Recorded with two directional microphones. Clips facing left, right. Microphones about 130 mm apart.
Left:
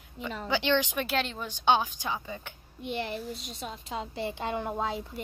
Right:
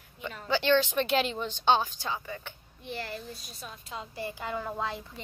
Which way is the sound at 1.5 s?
15° left (ahead or behind).